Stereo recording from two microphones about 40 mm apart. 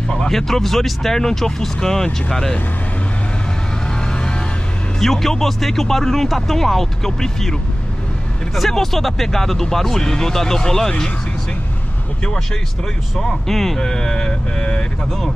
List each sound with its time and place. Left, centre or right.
0.3 s speech: centre
5.0 s speech: centre
8.5 s speech: centre
13.2 s speech: centre; by 14.9 s left